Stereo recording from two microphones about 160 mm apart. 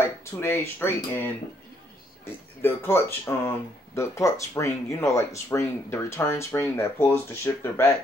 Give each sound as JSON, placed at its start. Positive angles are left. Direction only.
{"t": 0.0, "sound": "speech", "side_deg": 15}
{"t": 2.6, "sound": "speech", "side_deg": 15}